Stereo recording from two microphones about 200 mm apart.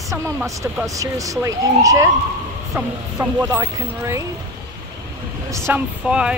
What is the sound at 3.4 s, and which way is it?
Speech, 15° right (ahead or behind).